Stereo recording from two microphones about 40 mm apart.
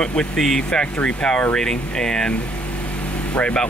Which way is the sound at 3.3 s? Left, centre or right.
Left.